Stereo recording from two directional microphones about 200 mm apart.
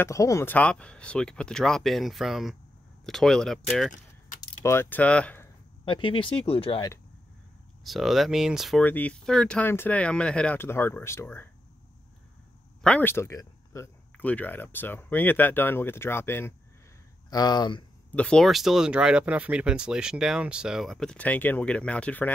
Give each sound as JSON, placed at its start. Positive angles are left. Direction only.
{"t": 0.0, "sound": "speech", "side_deg": 15}
{"t": 4.4, "sound": "speech", "side_deg": 15}
{"t": 5.9, "sound": "speech", "side_deg": 25}
{"t": 7.8, "sound": "speech", "side_deg": 0}
{"t": 12.8, "sound": "speech", "side_deg": 10}
{"t": 18.1, "sound": "speech", "side_deg": 5}